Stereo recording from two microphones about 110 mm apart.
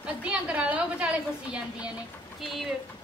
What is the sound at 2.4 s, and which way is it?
Speech, centre (ahead or behind).